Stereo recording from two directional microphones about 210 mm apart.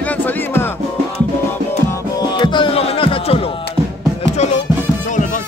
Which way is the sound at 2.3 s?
20° left (ahead or behind).